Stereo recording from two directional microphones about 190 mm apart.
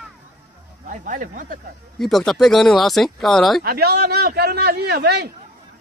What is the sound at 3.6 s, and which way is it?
A man's voice, 55° right (ahead or behind).